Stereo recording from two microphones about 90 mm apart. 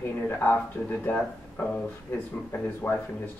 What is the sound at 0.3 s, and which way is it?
Speech, 20° left (ahead or behind).